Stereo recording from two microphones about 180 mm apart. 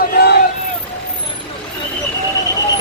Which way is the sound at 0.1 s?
65° left (ahead or behind).